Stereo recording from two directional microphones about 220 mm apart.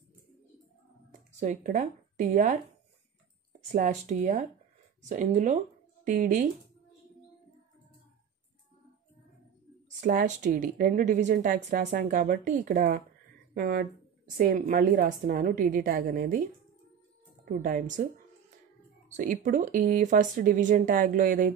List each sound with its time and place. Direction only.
1.4 s a woman's voice: 35° right (ahead or behind)
3.7 s a woman's voice: 35° right (ahead or behind)
9.8 s a woman's voice: 35° right (ahead or behind)
17.5 s a woman's voice: 35° right (ahead or behind)